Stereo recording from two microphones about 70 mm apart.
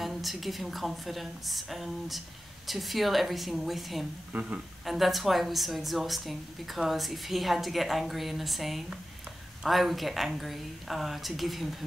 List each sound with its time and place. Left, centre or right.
0.0 s a woman's voice: centre
4.3 s speech: right
4.8 s a woman's voice: centre